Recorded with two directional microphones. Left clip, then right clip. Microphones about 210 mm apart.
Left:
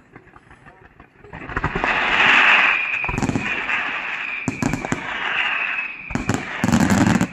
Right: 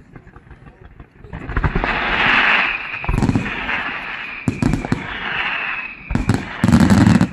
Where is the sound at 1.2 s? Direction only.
Centre (ahead or behind).